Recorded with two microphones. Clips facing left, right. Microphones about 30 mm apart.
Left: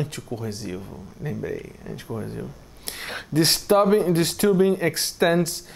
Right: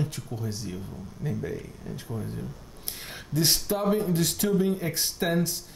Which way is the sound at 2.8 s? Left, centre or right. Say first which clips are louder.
Left 8 dB; left.